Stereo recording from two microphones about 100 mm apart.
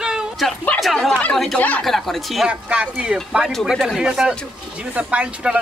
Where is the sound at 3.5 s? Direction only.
5° left (ahead or behind).